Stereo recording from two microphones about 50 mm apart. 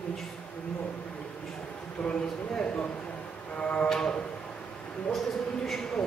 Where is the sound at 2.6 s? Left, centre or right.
Left.